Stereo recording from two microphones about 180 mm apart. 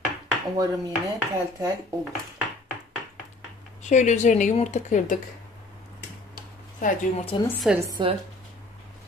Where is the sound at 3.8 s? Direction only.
40° left (ahead or behind).